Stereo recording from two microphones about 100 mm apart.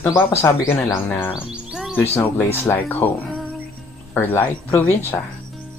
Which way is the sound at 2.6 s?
20° left (ahead or behind).